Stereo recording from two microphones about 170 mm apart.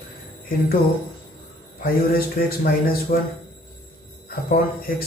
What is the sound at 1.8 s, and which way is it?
A man's voice, 60° left (ahead or behind).